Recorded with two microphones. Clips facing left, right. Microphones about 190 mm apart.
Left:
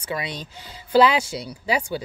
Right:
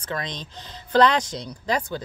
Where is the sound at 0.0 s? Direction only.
10° left (ahead or behind).